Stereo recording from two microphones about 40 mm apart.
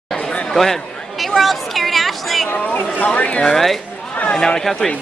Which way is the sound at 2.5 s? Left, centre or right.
Left.